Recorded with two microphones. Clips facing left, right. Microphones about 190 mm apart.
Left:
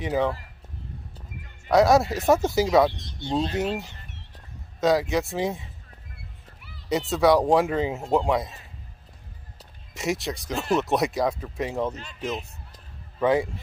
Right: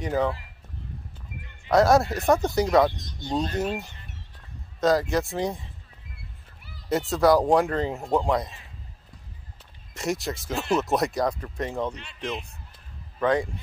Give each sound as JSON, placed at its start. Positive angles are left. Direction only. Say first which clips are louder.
{"t": 0.0, "sound": "speech", "louder": "left 1 dB", "side_deg": 0}
{"t": 1.7, "sound": "speech", "louder": "left 1 dB", "side_deg": 0}
{"t": 2.9, "sound": "speech", "louder": "even", "side_deg": -45}
{"t": 3.5, "sound": "speech", "louder": "left 1 dB", "side_deg": 0}
{"t": 6.9, "sound": "speech", "louder": "even", "side_deg": 0}
{"t": 9.9, "sound": "speech", "louder": "left 1 dB", "side_deg": 0}
{"t": 11.9, "sound": "speech", "louder": "left 2 dB", "side_deg": 40}
{"t": 12.2, "sound": "a man's voice", "louder": "left 2 dB", "side_deg": 5}